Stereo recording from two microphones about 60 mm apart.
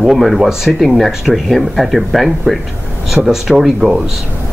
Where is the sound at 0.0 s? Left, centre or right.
Centre.